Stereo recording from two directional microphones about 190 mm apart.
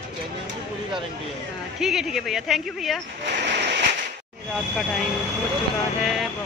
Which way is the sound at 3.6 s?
65° right (ahead or behind).